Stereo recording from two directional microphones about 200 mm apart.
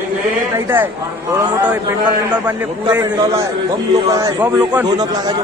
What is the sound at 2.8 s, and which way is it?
A man's voice, 20° right (ahead or behind).